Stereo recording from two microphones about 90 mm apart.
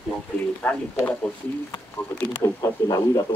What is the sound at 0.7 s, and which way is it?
Speech, 15° left (ahead or behind).